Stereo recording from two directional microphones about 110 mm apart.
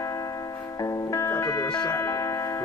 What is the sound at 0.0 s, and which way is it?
Music, 30° left (ahead or behind).